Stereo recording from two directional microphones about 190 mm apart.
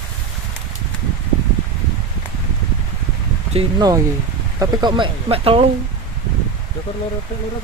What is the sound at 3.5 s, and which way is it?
Speech, 20° right (ahead or behind).